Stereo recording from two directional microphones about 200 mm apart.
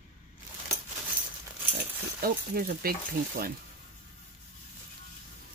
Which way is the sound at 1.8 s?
50° right (ahead or behind).